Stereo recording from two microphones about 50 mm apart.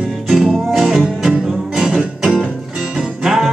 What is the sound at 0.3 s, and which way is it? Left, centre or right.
Music, centre.